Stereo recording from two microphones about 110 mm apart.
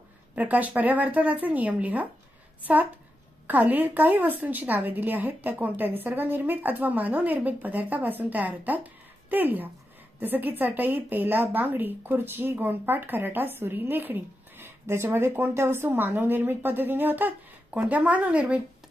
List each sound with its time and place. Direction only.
0.4 s a woman's voice: 15° right (ahead or behind)